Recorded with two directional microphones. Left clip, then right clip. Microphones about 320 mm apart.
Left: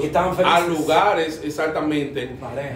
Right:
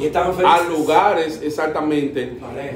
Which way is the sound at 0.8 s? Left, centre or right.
Centre.